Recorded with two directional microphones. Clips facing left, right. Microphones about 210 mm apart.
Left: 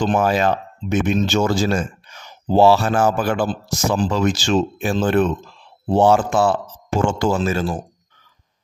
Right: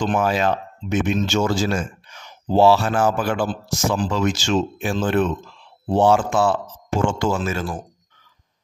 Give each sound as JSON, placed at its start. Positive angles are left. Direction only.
{"t": 0.0, "sound": "speech", "side_deg": 40}